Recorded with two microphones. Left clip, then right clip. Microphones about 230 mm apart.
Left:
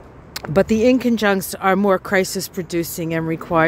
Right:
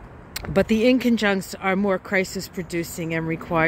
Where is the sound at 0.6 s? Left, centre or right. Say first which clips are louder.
Left 4 dB; centre.